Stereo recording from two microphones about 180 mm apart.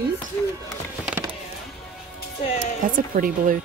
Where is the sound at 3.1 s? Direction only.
50° right (ahead or behind).